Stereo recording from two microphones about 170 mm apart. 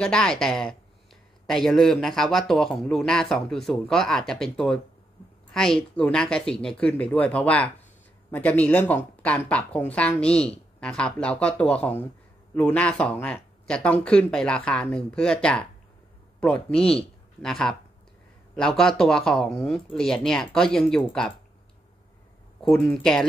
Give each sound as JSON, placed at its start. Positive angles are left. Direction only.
{"t": 0.0, "sound": "speech", "side_deg": 5}
{"t": 22.6, "sound": "speech", "side_deg": 5}